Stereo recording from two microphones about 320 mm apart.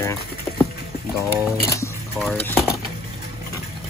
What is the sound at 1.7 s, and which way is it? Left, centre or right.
Speech, centre.